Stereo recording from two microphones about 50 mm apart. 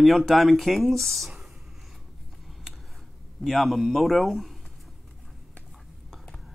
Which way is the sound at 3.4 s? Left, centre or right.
Centre.